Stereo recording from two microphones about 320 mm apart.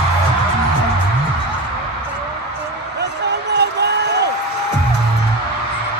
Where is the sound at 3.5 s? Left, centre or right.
Right.